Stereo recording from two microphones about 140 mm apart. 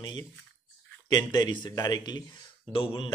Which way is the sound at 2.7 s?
40° left (ahead or behind).